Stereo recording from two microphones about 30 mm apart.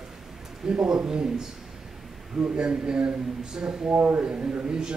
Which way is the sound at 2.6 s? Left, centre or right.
Right.